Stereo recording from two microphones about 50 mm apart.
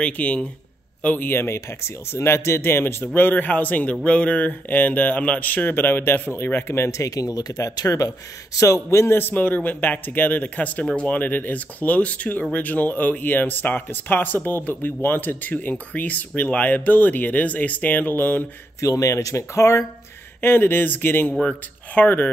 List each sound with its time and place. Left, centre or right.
0.0 s speech: left
1.0 s speech: left
1.4 s speech: left
3.2 s speech: left
7.5 s speech: left
9.3 s speech: left
15.5 s speech: left
18.8 s speech: left
20.3 s speech: left
21.3 s speech: left